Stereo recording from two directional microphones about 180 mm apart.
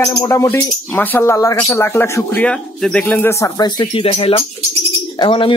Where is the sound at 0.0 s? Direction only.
20° left (ahead or behind).